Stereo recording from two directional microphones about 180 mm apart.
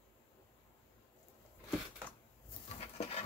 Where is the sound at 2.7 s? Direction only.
35° left (ahead or behind).